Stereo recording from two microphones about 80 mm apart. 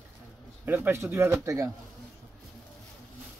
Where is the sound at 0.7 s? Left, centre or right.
Right.